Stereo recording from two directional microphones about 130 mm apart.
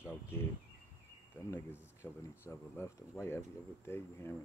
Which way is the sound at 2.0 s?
20° left (ahead or behind).